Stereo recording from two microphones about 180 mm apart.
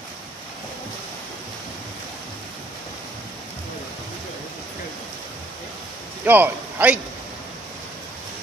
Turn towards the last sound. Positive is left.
turn(degrees=-10)  # may be behind; listen again after turning